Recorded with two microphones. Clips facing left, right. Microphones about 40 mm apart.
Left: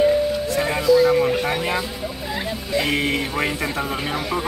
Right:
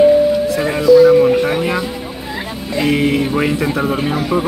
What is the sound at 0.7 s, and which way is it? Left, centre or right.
Speech, centre.